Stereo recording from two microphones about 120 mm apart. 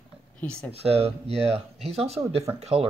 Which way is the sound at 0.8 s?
55° right (ahead or behind).